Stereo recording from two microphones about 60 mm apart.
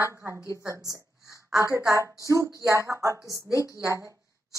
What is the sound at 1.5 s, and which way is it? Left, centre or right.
A woman's voice, right.